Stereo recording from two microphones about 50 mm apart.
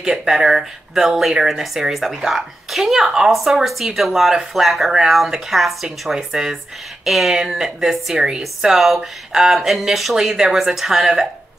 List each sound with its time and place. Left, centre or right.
0.0 s speech: centre